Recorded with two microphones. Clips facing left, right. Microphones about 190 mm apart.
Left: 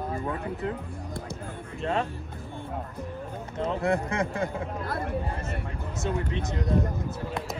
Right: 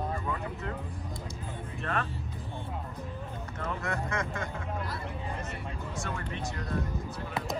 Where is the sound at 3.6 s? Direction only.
25° left (ahead or behind).